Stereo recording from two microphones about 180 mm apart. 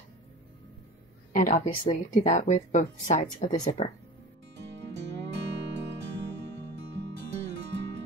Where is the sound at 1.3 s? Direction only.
45° left (ahead or behind).